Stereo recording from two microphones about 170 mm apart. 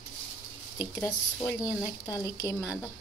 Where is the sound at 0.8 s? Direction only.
20° left (ahead or behind).